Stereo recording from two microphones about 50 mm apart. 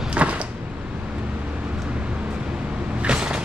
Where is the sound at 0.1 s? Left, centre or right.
Right.